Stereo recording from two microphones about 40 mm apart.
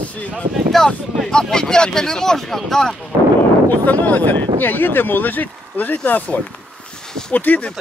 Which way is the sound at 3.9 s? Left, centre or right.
Left.